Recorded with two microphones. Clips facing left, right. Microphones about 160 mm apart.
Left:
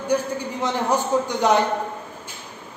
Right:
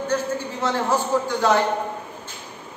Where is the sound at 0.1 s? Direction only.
15° left (ahead or behind).